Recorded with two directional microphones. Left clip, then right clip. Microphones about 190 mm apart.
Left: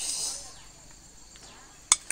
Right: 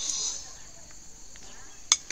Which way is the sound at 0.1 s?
40° left (ahead or behind).